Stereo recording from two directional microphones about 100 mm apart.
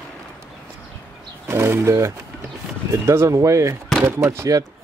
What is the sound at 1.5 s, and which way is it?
Speech, 25° right (ahead or behind).